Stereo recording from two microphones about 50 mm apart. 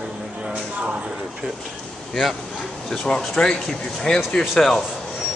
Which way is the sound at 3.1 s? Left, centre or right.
Centre.